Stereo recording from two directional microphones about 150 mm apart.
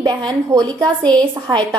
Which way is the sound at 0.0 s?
25° right (ahead or behind).